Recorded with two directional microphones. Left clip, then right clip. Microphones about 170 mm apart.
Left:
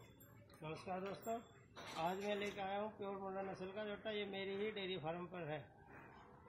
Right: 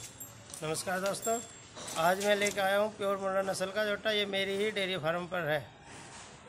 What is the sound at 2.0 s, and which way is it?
A man's voice, 20° right (ahead or behind).